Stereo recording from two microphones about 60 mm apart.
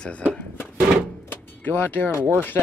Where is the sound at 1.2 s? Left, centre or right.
Left.